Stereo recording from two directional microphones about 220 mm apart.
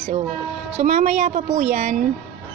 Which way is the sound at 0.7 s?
30° right (ahead or behind).